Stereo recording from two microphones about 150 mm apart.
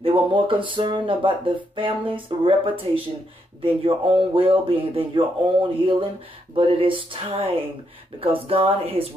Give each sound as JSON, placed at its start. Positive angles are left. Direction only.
{"t": 0.0, "sound": "speech", "side_deg": -35}